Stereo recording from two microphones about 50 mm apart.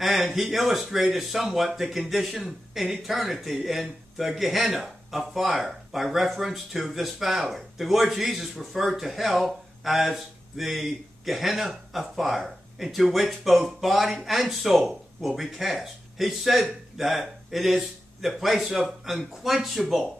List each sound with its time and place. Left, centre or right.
0.0 s speech: centre